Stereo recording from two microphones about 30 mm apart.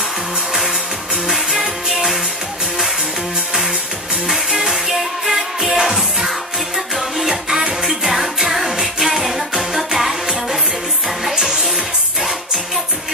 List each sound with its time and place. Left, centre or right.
1.5 s music: centre
4.3 s music: centre
11.3 s music: centre